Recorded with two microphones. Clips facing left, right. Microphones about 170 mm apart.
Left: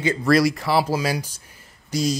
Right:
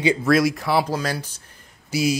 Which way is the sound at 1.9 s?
5° right (ahead or behind).